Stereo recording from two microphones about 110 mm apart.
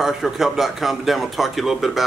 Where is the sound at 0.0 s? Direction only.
5° right (ahead or behind).